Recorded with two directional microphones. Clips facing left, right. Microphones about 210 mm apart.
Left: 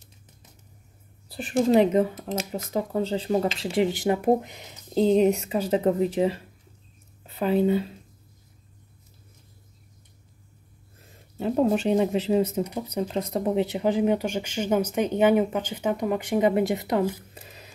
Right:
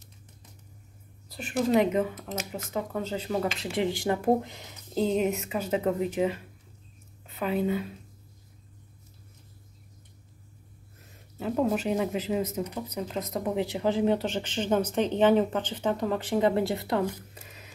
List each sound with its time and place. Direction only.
1.3 s speech: 30° left (ahead or behind)
4.9 s speech: 30° left (ahead or behind)
11.3 s speech: 30° left (ahead or behind)
17.3 s a sound: 35° left (ahead or behind)